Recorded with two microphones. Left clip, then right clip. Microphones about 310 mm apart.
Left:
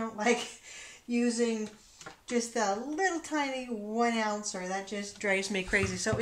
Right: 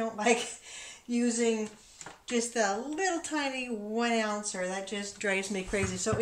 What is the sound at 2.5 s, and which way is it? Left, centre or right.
Speech, left.